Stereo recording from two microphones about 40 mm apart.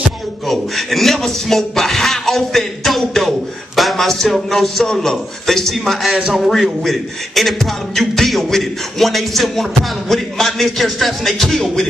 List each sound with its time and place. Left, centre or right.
0.5 s a man's voice: centre
6.3 s beatboxing: centre